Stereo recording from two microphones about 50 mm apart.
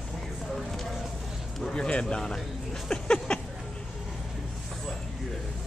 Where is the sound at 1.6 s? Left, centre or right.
Centre.